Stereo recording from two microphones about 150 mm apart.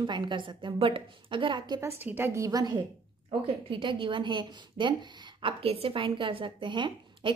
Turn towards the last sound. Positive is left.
turn(degrees=-30)  # may be behind; listen again after turning